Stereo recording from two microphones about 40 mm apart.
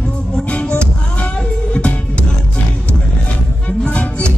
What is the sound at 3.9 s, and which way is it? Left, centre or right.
Music, left.